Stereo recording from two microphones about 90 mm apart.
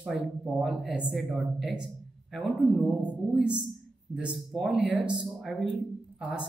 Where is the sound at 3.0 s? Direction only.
10° right (ahead or behind).